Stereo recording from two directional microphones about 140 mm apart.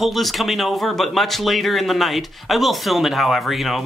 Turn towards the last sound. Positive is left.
turn(degrees=0)  # may be behind; listen again after turning